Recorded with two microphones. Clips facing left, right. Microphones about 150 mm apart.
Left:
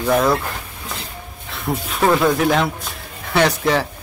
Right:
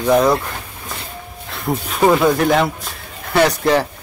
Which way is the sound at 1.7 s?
Centre (ahead or behind).